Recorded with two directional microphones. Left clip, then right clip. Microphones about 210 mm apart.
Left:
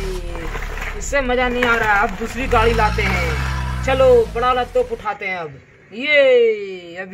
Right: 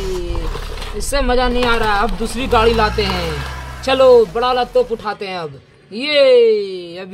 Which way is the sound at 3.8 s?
55° right (ahead or behind).